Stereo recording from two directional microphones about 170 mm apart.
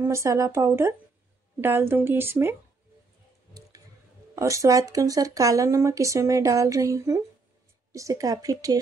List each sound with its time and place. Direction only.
0.0 s speech: 15° right (ahead or behind)
4.4 s speech: 20° right (ahead or behind)